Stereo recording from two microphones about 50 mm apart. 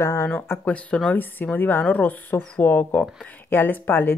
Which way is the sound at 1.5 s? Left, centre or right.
Left.